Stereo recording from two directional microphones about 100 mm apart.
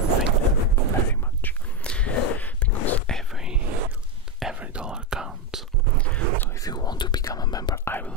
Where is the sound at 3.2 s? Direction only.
5° right (ahead or behind).